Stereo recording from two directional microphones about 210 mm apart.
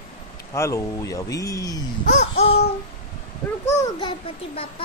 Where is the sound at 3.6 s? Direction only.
15° left (ahead or behind).